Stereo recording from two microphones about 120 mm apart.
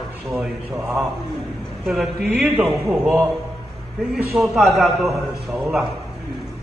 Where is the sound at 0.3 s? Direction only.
5° right (ahead or behind).